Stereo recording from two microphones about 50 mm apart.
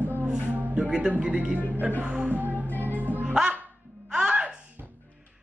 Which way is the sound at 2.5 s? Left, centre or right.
Left.